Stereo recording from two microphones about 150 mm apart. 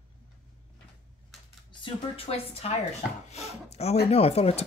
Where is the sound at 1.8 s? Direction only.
40° left (ahead or behind).